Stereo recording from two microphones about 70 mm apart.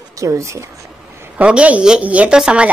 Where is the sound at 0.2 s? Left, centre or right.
Right.